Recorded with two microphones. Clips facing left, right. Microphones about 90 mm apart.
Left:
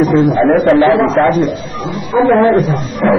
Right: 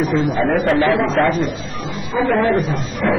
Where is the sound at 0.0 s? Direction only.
25° left (ahead or behind).